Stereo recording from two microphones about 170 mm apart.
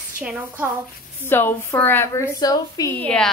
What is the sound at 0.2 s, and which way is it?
Speech, 5° right (ahead or behind).